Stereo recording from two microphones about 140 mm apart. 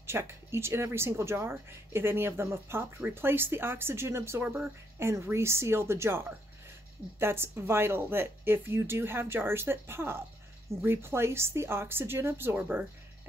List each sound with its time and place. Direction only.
0.0 s speech: 15° right (ahead or behind)